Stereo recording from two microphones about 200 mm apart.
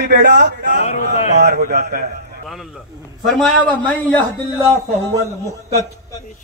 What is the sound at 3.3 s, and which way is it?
Speech, 5° left (ahead or behind).